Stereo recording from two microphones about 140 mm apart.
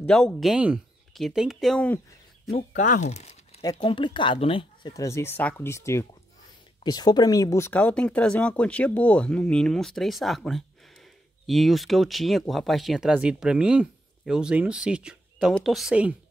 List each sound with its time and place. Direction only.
0.0 s speech: 5° left (ahead or behind)
2.7 s speech: 60° left (ahead or behind)
3.8 s speech: 35° left (ahead or behind)
4.9 s speech: 20° left (ahead or behind); by 16.2 s 10° right (ahead or behind)